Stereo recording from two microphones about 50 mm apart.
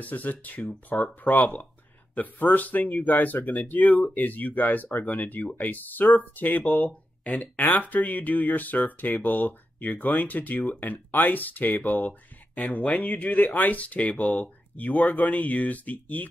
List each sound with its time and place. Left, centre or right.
0.0 s speech: left